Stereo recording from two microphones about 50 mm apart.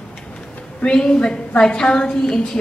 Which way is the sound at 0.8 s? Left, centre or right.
Centre.